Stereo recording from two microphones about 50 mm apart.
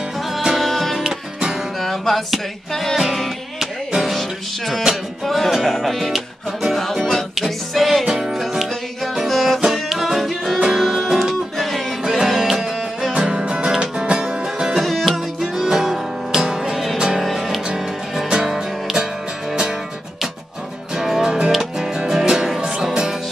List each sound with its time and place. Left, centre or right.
0.3 s music: centre
0.6 s music: centre
1.0 s music: centre
1.8 s music: centre
8.0 s music: centre
13.1 s music: centre
14.7 s music: centre
16.7 s music: centre
20.9 s music: centre